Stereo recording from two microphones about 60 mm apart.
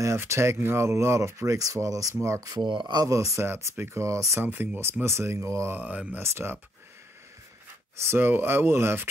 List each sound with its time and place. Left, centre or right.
0.0 s speech: right
2.2 s speech: right
3.4 s speech: right
4.0 s speech: right
4.4 s speech: right
5.7 s speech: right
6.1 s speech: right
8.0 s speech: right